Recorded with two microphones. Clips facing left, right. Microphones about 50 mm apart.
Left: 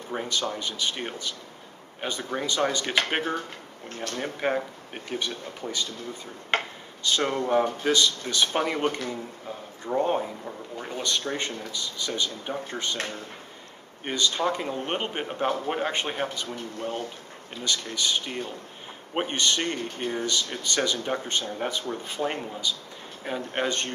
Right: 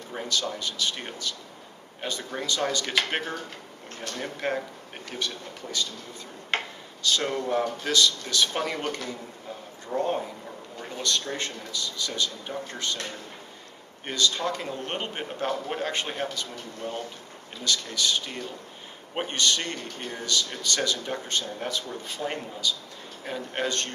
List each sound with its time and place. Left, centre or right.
0.1 s speech: centre
7.0 s speech: left
9.9 s speech: centre
14.0 s speech: left